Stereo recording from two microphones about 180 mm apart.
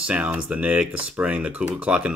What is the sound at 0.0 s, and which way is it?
Speech, 5° right (ahead or behind).